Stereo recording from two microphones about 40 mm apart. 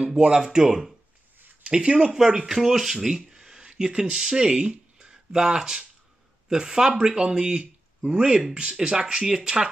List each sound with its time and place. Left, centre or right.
0.2 s speech: centre
2.1 s speech: centre